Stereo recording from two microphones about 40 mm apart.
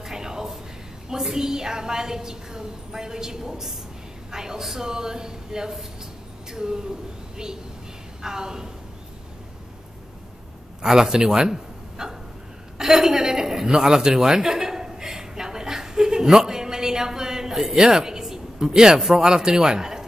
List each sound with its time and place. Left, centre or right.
0.0 s a sound: centre
1.0 s a woman's voice: centre
8.2 s a woman's voice: centre
10.8 s a man's voice: centre
12.7 s a sound: centre
19.3 s speech: centre